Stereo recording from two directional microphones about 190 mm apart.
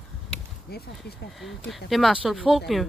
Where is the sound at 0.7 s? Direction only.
55° left (ahead or behind).